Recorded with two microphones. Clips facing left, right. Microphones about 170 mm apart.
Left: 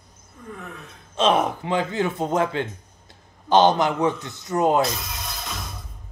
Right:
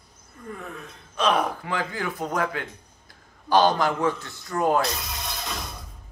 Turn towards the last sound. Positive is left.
turn(degrees=0)  # may be behind; listen again after turning